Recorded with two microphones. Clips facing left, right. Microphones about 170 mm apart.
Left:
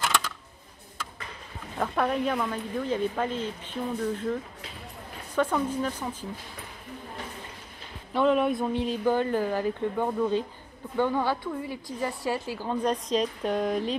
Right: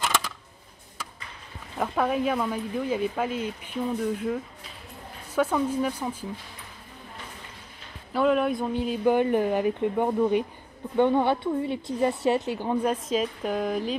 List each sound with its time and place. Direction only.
1.8 s speech: 5° right (ahead or behind)
8.1 s speech: 5° right (ahead or behind)
9.0 s a woman's voice: 15° right (ahead or behind)
12.8 s speech: 5° right (ahead or behind)